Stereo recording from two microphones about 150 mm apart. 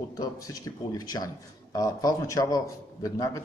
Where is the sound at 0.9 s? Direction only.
25° left (ahead or behind).